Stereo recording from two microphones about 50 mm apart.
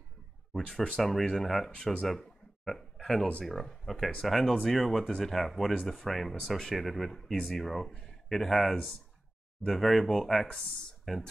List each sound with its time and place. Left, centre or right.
0.5 s speech: centre
3.0 s a sound: centre
3.4 s speech: centre